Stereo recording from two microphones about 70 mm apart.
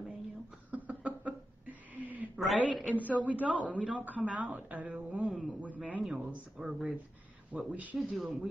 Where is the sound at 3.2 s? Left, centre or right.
Right.